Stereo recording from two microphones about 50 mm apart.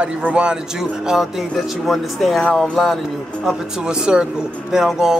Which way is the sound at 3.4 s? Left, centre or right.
Centre.